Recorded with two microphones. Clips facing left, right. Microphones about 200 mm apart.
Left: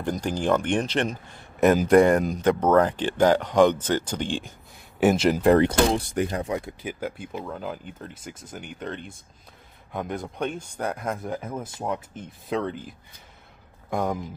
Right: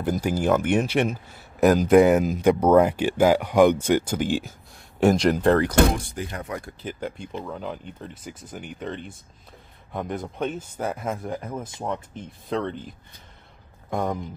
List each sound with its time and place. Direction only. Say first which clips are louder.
0.0 s speech: right 2 dB; 5° right (ahead or behind)
5.0 s speech: even; 5° left (ahead or behind)
5.6 s speech: even; 25° left (ahead or behind)
6.9 s speech: even; 5° left (ahead or behind)
13.8 s speech: even; centre (ahead or behind)